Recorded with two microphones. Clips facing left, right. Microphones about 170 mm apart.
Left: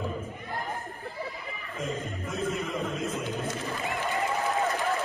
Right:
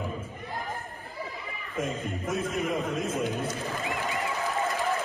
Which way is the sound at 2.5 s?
20° right (ahead or behind).